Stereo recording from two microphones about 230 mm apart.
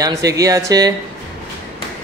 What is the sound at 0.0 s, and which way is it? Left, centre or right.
Speech, centre.